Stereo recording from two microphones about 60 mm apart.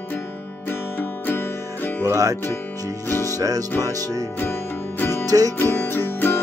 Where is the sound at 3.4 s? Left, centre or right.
Right.